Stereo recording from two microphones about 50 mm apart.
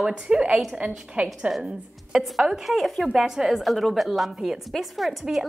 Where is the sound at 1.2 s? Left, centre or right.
Right.